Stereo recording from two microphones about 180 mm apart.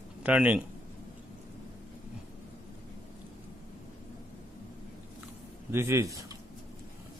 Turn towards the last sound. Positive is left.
turn(degrees=-20)  # may be behind; listen again after turning